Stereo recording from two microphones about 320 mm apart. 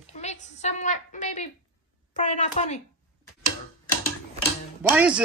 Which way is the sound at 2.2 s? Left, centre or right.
Left.